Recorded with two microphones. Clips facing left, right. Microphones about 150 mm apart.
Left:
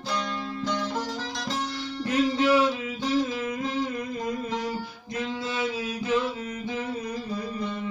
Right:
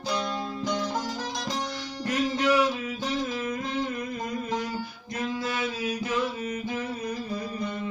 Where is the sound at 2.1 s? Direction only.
25° left (ahead or behind).